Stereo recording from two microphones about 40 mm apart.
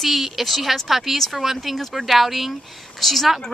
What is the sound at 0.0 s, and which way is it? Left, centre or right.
Speech, centre.